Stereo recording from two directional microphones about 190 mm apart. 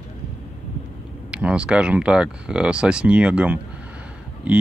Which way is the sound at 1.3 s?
5° right (ahead or behind).